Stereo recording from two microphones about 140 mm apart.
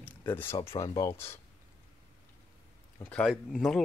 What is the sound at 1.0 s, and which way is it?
Speech, 20° left (ahead or behind).